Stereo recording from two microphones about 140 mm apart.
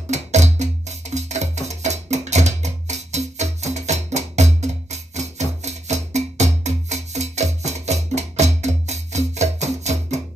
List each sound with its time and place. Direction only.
0.1 s music: 55° right (ahead or behind)